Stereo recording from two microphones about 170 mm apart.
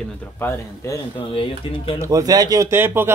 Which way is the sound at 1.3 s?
30° left (ahead or behind).